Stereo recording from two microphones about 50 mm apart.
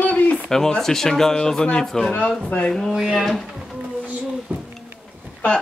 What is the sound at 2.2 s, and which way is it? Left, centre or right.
Speech, left.